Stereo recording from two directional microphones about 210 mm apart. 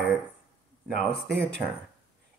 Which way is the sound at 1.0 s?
5° left (ahead or behind).